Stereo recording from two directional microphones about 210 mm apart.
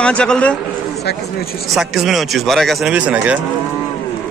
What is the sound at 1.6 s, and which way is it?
A man's voice, centre (ahead or behind).